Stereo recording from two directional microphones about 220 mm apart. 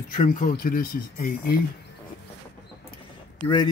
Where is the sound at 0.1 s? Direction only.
35° left (ahead or behind).